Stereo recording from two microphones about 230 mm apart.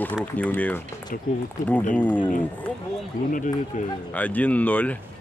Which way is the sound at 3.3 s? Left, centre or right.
Left.